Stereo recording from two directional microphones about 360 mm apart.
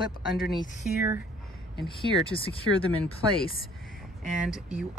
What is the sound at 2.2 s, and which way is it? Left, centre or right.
Speech, centre.